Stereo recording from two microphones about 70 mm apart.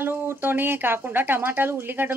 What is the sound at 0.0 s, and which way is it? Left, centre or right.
Speech, right.